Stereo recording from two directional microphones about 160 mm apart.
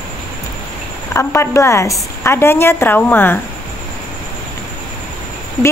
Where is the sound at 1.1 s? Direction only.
15° left (ahead or behind).